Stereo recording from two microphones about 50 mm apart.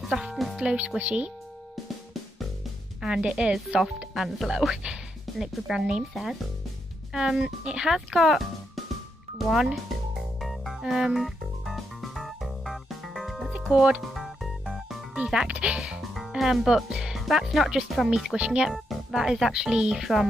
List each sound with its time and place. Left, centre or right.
0.1 s music: centre
0.7 s speech: right
3.0 s a woman's voice: centre
4.1 s speech: centre
7.1 s a woman's voice: centre
10.4 s music: centre
13.5 s music: centre
14.0 s music: centre
15.3 s speech: right
16.0 s speech: centre
18.1 s a woman's voice: centre
18.7 s a woman's voice: centre